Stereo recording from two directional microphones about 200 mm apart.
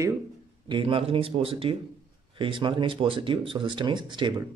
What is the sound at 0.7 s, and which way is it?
Speech, 25° right (ahead or behind).